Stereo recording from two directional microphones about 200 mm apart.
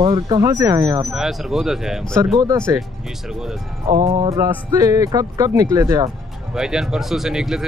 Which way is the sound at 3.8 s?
35° right (ahead or behind).